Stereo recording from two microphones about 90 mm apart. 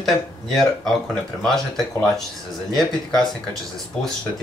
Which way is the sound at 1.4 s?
5° left (ahead or behind).